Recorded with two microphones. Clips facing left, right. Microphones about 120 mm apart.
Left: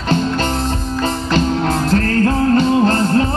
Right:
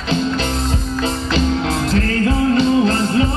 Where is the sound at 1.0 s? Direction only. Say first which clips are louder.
Left 2 dB; 45° left (ahead or behind).